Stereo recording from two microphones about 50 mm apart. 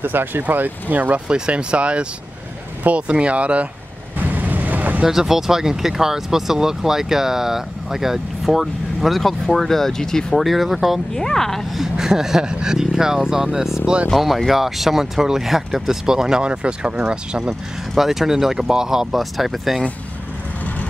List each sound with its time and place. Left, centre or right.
0.0 s speech: right
1.3 s speech: centre
3.1 s speech: right
4.2 s vehicle: right
5.0 s speech: centre
11.1 s speech: centre
11.8 s speech: centre
17.9 s speech: centre